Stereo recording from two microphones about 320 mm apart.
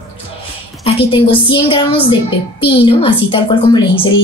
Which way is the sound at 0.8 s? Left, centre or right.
Centre.